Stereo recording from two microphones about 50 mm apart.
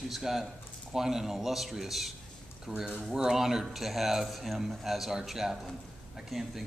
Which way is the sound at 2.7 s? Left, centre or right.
Centre.